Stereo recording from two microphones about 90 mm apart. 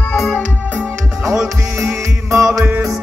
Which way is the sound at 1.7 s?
35° right (ahead or behind).